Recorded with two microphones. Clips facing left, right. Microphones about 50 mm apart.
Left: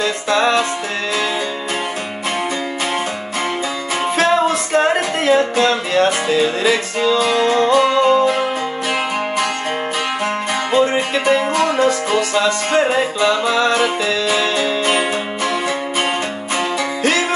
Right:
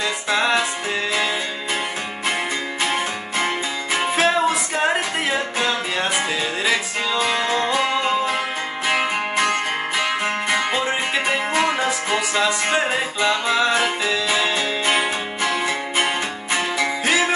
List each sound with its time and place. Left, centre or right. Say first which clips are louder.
0.0 s music: left 5 dB; centre
4.2 s music: left 4 dB; centre
7.2 s music: left 4 dB; centre
8.8 s music: right 1 dB; right
11.5 s music: left 5 dB; centre